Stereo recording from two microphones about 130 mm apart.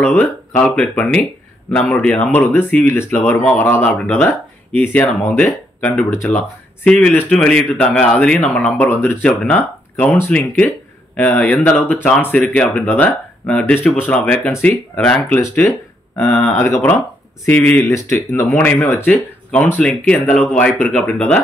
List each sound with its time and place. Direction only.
0.0 s speech: 10° left (ahead or behind)
15.4 s speech: 20° left (ahead or behind)
16.2 s speech: 10° left (ahead or behind)